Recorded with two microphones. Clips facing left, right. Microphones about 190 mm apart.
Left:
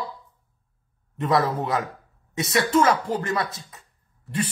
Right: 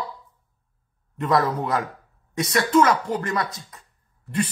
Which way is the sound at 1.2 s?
25° left (ahead or behind).